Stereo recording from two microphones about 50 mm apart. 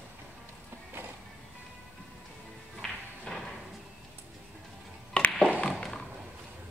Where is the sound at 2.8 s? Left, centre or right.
Centre.